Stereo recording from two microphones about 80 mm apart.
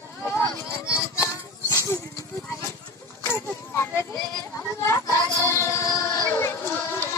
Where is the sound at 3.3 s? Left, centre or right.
Left.